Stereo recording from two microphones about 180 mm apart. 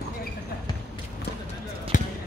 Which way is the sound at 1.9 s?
45° left (ahead or behind).